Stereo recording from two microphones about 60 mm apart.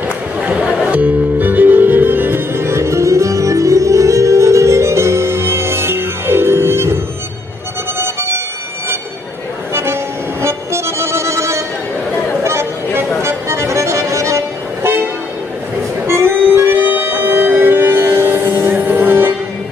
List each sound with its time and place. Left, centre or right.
0.4 s music: right
8.0 s music: right
10.4 s music: right
12.4 s chatter: right
13.2 s music: right
16.1 s music: right